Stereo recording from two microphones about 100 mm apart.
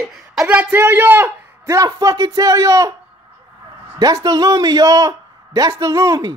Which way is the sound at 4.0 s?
40° right (ahead or behind).